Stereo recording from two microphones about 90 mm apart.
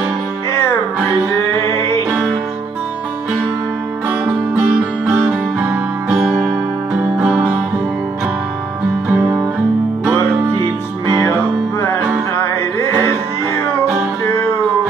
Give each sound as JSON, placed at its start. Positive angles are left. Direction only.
{"t": 2.0, "sound": "music", "side_deg": 0}
{"t": 4.1, "sound": "music", "side_deg": -15}
{"t": 9.1, "sound": "music", "side_deg": -20}
{"t": 10.5, "sound": "music", "side_deg": -65}